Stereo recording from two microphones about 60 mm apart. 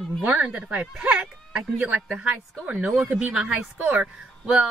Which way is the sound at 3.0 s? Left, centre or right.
Centre.